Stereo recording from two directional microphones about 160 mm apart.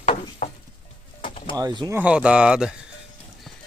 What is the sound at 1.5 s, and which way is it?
Speech, 25° right (ahead or behind).